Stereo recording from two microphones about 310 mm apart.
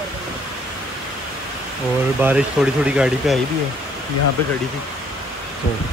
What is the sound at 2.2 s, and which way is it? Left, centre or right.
Speech, centre.